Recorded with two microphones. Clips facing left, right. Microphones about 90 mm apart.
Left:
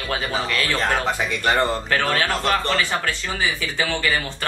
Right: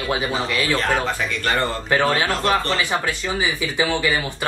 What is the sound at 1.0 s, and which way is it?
Speech, 20° left (ahead or behind).